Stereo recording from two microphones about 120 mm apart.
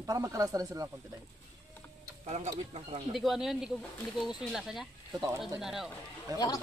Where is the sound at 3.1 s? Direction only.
Centre (ahead or behind).